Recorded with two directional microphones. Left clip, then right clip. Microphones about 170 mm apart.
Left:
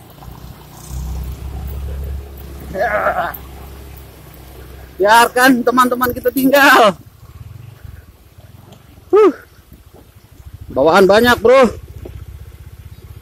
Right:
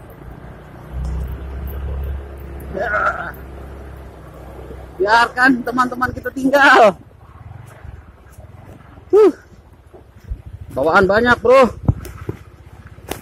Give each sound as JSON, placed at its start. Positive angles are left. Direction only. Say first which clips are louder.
{"t": 2.8, "sound": "a man's voice", "louder": "left 3 dB", "side_deg": 60}
{"t": 5.0, "sound": "a man's voice", "louder": "left 3 dB", "side_deg": 55}
{"t": 10.7, "sound": "a man's voice", "louder": "left 4 dB", "side_deg": 55}